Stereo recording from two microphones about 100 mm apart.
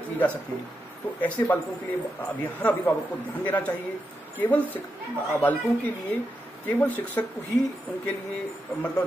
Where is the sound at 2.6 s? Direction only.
15° left (ahead or behind).